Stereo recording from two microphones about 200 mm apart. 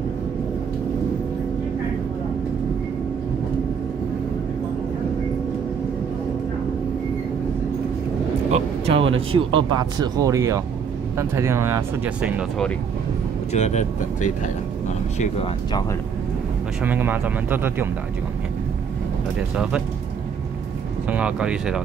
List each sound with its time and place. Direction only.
8.5 s speech: 30° right (ahead or behind); by 12.6 s 5° right (ahead or behind)
13.5 s speech: 35° left (ahead or behind)
16.8 s speech: 10° right (ahead or behind)
19.5 s speech: 5° right (ahead or behind)
21.1 s speech: 5° right (ahead or behind)